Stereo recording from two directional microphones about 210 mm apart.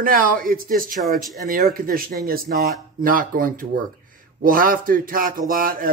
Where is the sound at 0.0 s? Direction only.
40° right (ahead or behind).